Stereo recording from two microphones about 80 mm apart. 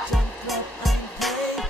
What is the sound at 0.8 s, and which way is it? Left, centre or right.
Music, centre.